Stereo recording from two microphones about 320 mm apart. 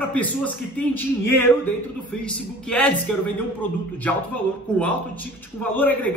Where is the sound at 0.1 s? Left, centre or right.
Centre.